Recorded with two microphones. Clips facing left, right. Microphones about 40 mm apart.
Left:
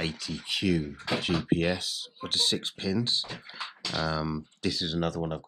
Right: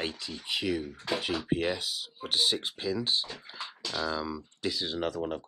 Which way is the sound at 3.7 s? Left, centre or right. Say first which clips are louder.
Left 2 dB; left.